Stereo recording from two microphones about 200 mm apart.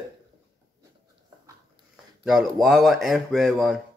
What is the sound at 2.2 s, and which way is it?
Speech, centre (ahead or behind).